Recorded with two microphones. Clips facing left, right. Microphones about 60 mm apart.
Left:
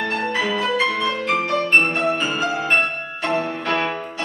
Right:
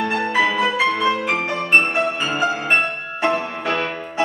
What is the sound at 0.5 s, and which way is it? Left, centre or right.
Music, centre.